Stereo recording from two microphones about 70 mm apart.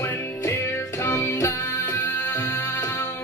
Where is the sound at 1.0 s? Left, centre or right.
Left.